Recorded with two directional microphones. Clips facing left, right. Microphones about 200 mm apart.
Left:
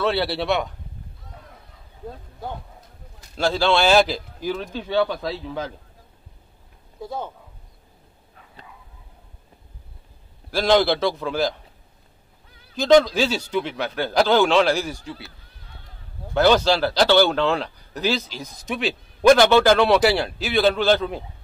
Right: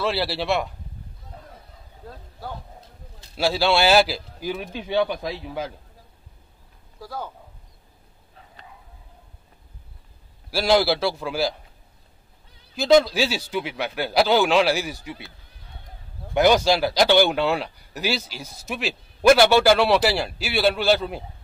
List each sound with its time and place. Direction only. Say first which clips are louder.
0.0 s a man's voice: left 2 dB; centre (ahead or behind)
3.3 s speech: left 1 dB; 10° right (ahead or behind)
7.0 s speech: left 3 dB; 25° left (ahead or behind)
10.5 s a man's voice: left 1 dB; 5° right (ahead or behind)
12.7 s speech: left 2 dB; 5° right (ahead or behind)
16.3 s speech: left 1 dB; 10° right (ahead or behind)